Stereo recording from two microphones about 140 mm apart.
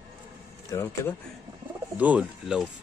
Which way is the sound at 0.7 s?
20° left (ahead or behind).